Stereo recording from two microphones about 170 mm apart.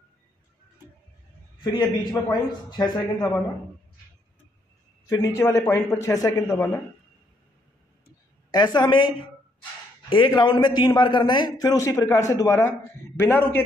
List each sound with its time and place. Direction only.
1.6 s a man's voice: 25° left (ahead or behind)
5.0 s a man's voice: 20° left (ahead or behind)
8.5 s a man's voice: 25° left (ahead or behind)